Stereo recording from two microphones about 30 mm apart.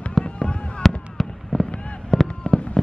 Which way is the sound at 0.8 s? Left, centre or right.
Centre.